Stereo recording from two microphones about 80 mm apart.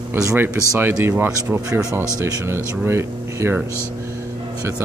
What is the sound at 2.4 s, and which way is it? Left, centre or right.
Speech, right.